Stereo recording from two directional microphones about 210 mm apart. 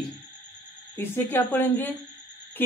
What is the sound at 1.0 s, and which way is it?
Speech, 10° left (ahead or behind).